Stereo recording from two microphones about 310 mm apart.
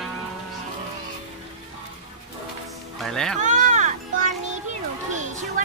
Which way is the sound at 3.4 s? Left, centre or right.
Right.